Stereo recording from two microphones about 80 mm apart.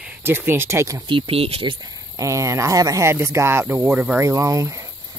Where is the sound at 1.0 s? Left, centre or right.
Right.